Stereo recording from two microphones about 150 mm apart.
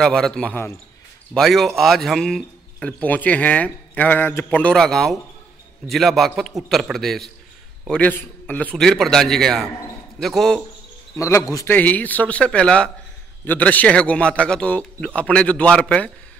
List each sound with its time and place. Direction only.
0.0 s a man's voice: 5° left (ahead or behind)
11.1 s speech: 20° left (ahead or behind)